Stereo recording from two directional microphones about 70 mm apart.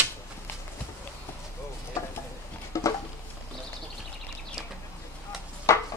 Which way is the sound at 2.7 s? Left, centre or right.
Left.